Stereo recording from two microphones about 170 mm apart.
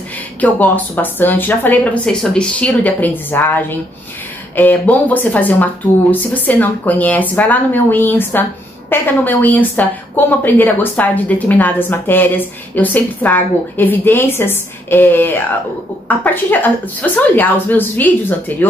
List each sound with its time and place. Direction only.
0.4 s a woman's voice: 10° left (ahead or behind)